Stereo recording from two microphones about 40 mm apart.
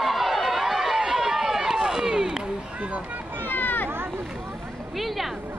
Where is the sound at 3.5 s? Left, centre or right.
Left.